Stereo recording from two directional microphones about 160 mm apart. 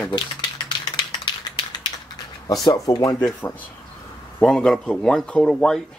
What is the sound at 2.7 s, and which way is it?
Speech, 25° left (ahead or behind).